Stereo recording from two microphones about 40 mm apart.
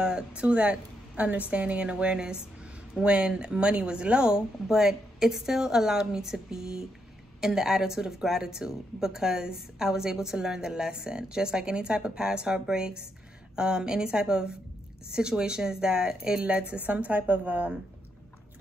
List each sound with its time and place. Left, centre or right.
0.4 s a woman's voice: right
16.7 s speech: right